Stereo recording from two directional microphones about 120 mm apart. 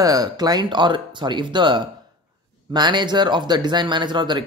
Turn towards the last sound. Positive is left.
turn(degrees=-40)  # may be behind; listen again after turning